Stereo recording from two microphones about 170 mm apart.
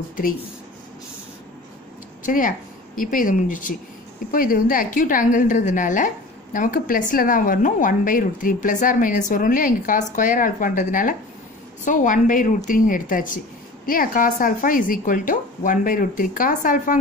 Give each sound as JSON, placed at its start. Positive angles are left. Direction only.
{"t": 2.2, "sound": "a woman's voice", "side_deg": 55}